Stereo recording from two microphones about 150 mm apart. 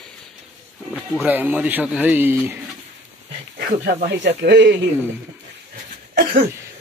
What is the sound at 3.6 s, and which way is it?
Speech, 70° right (ahead or behind).